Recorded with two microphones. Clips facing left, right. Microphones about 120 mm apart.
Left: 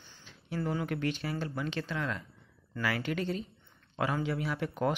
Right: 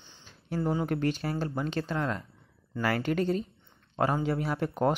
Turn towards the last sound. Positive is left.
turn(degrees=-40)  # may be behind; listen again after turning